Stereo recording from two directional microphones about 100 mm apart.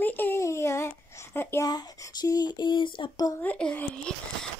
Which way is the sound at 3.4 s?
15° left (ahead or behind).